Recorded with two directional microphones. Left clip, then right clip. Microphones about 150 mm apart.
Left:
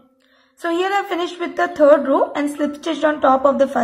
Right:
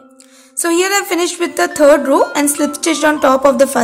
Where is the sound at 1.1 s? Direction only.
25° right (ahead or behind).